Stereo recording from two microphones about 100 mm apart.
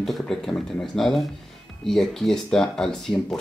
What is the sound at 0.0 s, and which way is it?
Speech, 5° left (ahead or behind).